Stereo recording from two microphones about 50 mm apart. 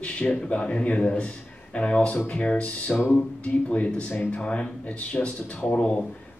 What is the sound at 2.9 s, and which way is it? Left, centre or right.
Music, left.